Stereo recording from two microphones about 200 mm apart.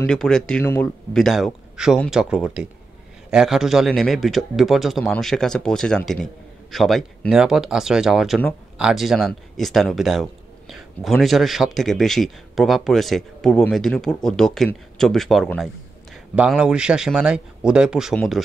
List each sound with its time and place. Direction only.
0.0 s speech: 5° left (ahead or behind)